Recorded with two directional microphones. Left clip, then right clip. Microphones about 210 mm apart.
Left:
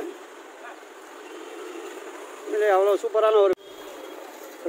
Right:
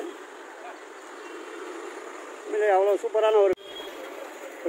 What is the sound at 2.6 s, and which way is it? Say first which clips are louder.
Speech: left 1 dB; 25° left (ahead or behind).